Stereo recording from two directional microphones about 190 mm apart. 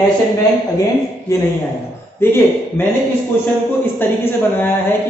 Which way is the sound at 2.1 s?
10° left (ahead or behind).